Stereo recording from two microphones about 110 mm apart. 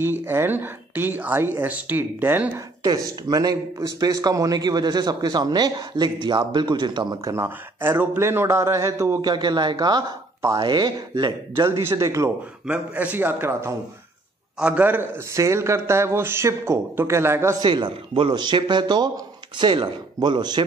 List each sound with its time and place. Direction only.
0.0 s speech: 20° right (ahead or behind)
2.8 s a man's voice: 35° right (ahead or behind)
7.3 s a man's voice: 25° right (ahead or behind)
9.2 s a man's voice: 40° right (ahead or behind)
11.6 s a man's voice: 25° right (ahead or behind)
12.6 s a man's voice: 10° right (ahead or behind)
17.6 s speech: 45° right (ahead or behind)